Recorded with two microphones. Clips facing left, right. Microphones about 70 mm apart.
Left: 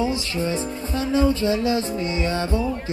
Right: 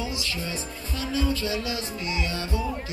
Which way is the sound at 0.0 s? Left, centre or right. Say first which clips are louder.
Left 8 dB; left.